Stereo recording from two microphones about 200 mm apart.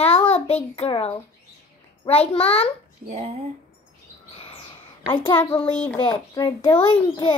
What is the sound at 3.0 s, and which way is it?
Speech, 35° right (ahead or behind).